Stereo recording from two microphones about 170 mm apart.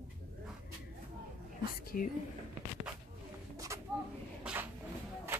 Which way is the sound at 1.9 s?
55° left (ahead or behind).